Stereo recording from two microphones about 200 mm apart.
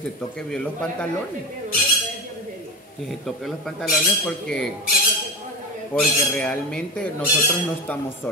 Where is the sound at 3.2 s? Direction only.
Centre (ahead or behind).